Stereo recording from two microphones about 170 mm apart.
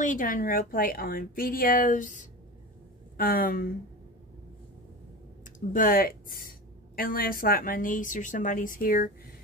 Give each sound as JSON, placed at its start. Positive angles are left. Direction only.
{"t": 0.0, "sound": "speech", "side_deg": 50}
{"t": 5.4, "sound": "speech", "side_deg": 50}